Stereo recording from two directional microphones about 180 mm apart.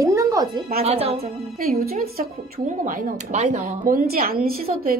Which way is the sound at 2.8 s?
45° right (ahead or behind).